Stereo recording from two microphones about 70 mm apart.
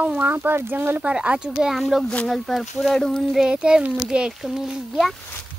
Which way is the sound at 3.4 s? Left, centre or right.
Centre.